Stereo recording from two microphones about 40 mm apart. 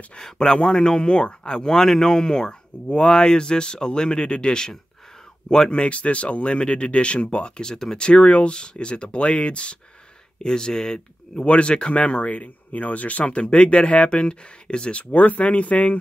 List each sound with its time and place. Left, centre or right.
0.4 s a man's voice: centre
7.7 s speech: centre
8.0 s a man's voice: left
10.4 s speech: centre
11.4 s a man's voice: left
11.9 s speech: left